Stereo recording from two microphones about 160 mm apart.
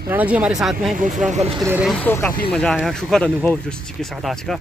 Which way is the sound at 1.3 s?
45° right (ahead or behind).